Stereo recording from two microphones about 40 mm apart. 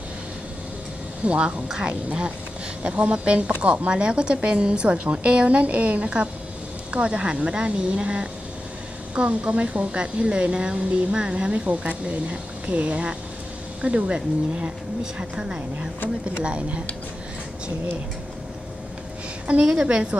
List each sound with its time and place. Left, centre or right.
1.2 s a woman's voice: right
16.3 s a woman's voice: right
19.4 s a woman's voice: right